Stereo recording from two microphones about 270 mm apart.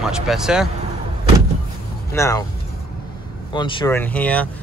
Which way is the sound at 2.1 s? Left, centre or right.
Centre.